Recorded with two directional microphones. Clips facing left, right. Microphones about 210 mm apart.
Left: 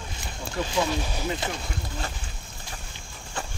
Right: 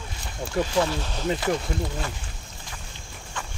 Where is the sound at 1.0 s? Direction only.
10° left (ahead or behind).